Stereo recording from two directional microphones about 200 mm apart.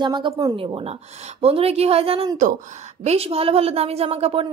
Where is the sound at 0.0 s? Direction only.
20° right (ahead or behind).